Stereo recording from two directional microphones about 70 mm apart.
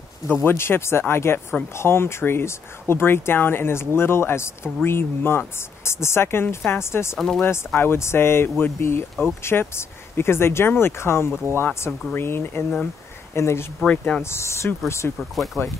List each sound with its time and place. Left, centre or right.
0.3 s speech: left
13.8 s speech: centre
14.2 s speech: left
15.1 s speech: centre